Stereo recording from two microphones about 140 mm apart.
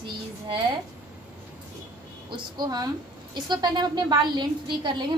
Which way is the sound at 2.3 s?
30° right (ahead or behind).